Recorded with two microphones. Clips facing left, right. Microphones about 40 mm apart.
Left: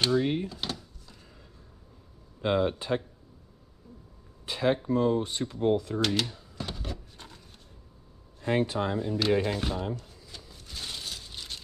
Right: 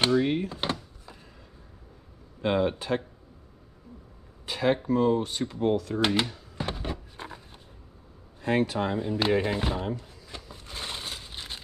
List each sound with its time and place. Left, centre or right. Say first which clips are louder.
0.0 s speech: right 2 dB; centre
0.5 s a sound: right 5 dB; right
2.4 s speech: right 1 dB; centre
4.5 s speech: right 1 dB; centre
4.9 s speech: right 2 dB; centre
5.9 s a sound: right 3 dB; right